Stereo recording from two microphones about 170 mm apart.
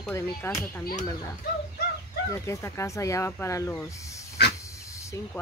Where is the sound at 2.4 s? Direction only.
15° left (ahead or behind).